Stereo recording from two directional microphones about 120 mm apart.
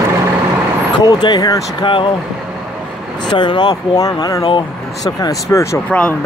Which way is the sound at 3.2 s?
40° left (ahead or behind).